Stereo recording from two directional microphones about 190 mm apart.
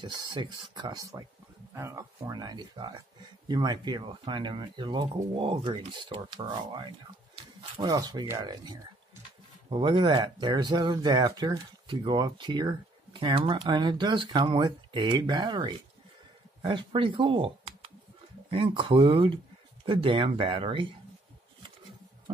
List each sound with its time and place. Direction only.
0.0 s speech: 25° right (ahead or behind)